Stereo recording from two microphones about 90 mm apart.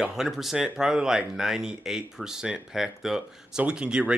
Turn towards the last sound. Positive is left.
turn(degrees=-10)  # may be behind; listen again after turning